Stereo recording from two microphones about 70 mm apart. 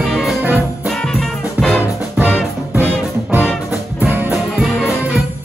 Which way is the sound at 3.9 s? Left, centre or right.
Right.